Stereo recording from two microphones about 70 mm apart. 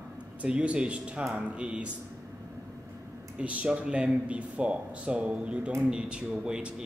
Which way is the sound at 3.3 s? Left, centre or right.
Centre.